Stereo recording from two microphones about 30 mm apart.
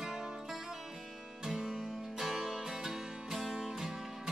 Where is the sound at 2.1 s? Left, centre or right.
Centre.